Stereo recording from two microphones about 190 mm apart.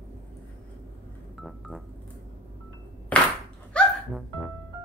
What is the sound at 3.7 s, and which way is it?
Music, centre (ahead or behind).